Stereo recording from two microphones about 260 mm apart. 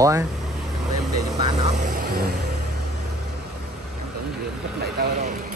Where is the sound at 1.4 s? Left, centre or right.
Right.